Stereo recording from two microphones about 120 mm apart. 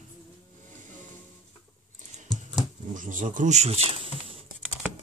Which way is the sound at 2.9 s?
90° right.